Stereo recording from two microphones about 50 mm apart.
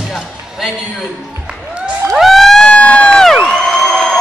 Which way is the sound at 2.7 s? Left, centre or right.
Left.